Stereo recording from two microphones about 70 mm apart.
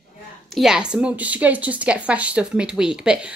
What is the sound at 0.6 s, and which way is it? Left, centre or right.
A woman's voice, centre.